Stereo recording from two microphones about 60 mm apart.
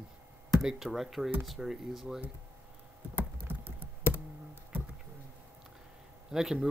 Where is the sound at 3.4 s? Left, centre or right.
Right.